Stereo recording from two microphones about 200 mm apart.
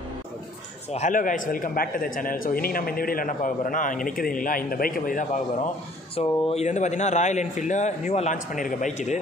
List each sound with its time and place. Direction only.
0.9 s a man's voice: 40° left (ahead or behind)
6.1 s speech: 30° left (ahead or behind)